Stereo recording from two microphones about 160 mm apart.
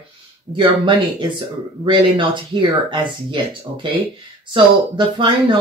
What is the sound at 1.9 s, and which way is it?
Speech, 30° right (ahead or behind).